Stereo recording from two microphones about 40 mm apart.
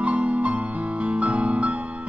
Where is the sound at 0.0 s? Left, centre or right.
Right.